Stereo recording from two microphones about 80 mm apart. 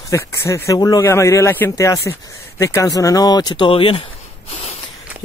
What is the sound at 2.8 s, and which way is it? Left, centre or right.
Speech, left.